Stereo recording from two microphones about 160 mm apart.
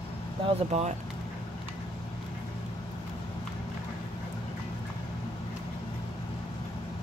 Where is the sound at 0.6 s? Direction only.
40° right (ahead or behind).